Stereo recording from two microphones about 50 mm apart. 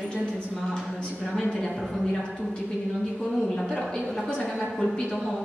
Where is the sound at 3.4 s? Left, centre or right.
Centre.